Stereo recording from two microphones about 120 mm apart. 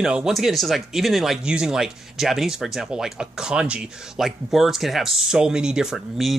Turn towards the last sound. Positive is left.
turn(degrees=-5)  # may be behind; listen again after turning